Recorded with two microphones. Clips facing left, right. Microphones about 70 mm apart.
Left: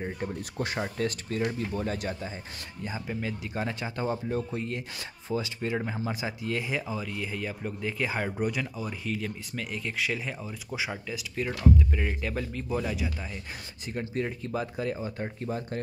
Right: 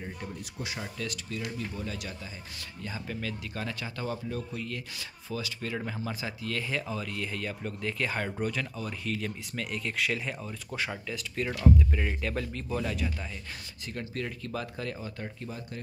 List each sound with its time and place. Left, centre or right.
0.0 s speech: left
2.8 s speech: left
13.9 s speech: left